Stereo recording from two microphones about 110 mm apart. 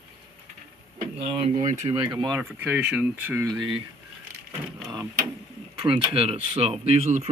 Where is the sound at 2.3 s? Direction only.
20° right (ahead or behind).